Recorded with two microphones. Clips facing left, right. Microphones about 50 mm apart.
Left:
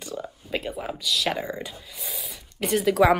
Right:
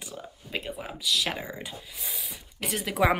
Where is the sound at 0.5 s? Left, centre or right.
Centre.